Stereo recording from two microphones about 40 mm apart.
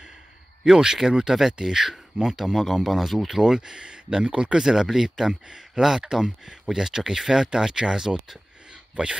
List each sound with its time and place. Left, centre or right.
0.7 s speech: centre